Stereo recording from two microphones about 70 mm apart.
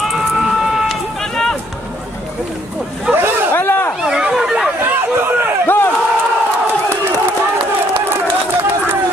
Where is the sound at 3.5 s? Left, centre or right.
Left.